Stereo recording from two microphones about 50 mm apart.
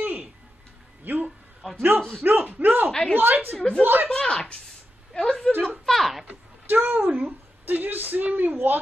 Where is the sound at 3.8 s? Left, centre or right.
Right.